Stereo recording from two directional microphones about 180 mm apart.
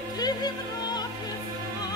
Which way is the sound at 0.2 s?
20° left (ahead or behind).